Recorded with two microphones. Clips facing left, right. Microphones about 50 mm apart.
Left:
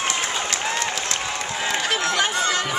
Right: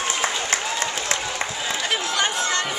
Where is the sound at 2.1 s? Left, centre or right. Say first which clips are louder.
Even; centre.